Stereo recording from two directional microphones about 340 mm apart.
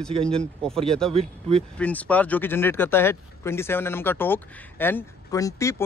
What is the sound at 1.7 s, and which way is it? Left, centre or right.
Speech, centre.